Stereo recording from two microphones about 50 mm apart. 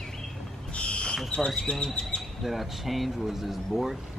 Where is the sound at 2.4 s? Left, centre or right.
Centre.